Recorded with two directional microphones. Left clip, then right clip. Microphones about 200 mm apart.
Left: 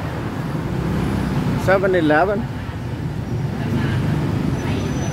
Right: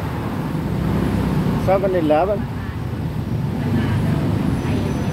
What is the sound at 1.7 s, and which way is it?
Speech, 20° left (ahead or behind).